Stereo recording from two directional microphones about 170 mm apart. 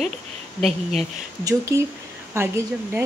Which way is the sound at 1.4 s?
20° right (ahead or behind).